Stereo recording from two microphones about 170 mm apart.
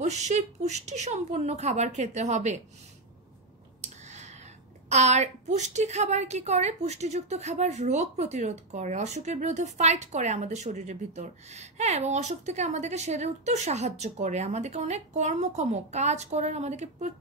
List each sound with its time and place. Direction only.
0.0 s a woman's voice: 40° right (ahead or behind)
4.1 s a sound: 40° right (ahead or behind)
4.8 s a woman's voice: 40° right (ahead or behind)